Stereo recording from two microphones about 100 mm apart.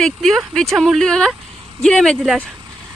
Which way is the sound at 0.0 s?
5° left (ahead or behind).